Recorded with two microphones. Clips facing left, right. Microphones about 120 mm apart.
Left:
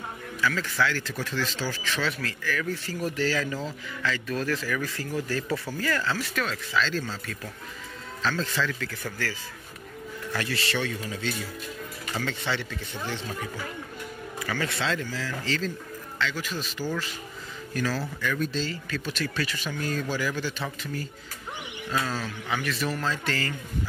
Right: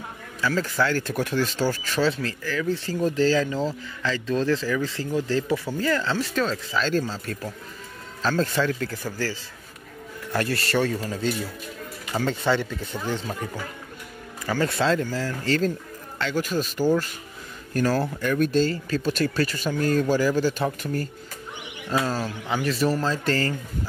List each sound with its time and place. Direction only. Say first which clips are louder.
0.4 s a man's voice: right 3 dB; 35° right (ahead or behind)
2.0 s speech: right 5 dB; 30° right (ahead or behind)
6.8 s a man's voice: right 4 dB; 45° right (ahead or behind)
8.2 s speech: right 5 dB; 45° right (ahead or behind)
10.3 s a man's voice: right 6 dB; 50° right (ahead or behind)
14.4 s a man's voice: right 6 dB; 40° right (ahead or behind)
21.9 s speech: right 5 dB; 40° right (ahead or behind)